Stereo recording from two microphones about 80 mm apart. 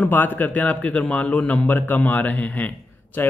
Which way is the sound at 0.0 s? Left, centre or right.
Left.